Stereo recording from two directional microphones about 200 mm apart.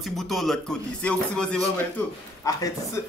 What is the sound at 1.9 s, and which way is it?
Speech, 15° left (ahead or behind).